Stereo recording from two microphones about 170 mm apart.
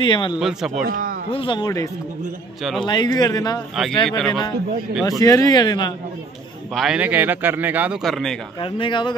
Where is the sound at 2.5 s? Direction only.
Centre (ahead or behind).